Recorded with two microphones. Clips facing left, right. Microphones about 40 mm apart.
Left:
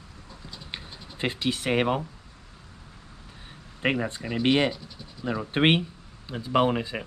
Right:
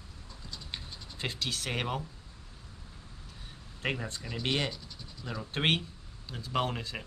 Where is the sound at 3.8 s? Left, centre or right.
Left.